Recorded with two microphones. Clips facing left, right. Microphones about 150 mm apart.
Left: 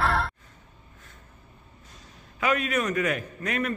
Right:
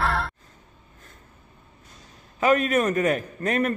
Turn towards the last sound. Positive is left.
turn(degrees=-40)  # may be behind; listen again after turning